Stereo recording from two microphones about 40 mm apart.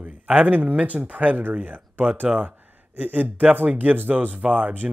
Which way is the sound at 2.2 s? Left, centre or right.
Right.